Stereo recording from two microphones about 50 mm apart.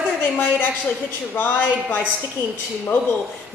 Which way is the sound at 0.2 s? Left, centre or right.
Left.